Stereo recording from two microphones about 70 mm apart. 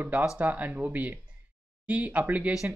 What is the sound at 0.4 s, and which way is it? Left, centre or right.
Speech, right.